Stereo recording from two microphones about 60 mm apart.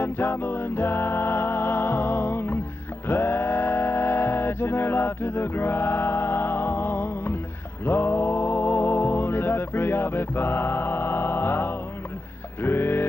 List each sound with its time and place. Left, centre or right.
0.0 s music: left